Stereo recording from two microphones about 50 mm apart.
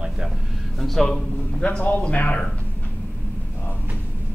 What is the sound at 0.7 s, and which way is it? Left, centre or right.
Speech, centre.